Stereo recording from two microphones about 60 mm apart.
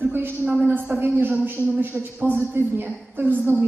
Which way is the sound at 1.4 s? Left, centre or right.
Right.